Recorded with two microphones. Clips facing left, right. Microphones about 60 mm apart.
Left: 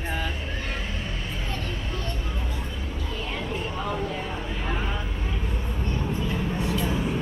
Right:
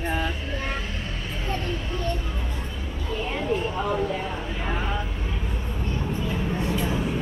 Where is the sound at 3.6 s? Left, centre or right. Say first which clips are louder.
Right 4 dB; centre.